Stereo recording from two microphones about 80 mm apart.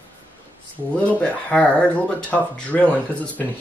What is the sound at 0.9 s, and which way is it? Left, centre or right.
Speech, centre.